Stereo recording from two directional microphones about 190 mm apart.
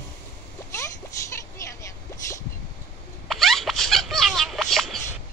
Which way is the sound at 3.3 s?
Centre (ahead or behind).